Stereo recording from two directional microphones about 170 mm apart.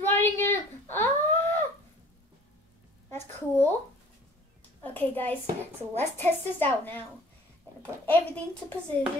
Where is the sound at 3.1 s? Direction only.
15° left (ahead or behind).